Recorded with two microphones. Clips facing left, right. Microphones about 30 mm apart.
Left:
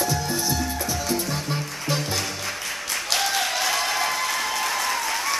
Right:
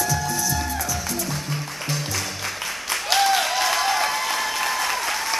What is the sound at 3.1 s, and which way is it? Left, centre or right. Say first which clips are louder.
Applause: right 5 dB; centre.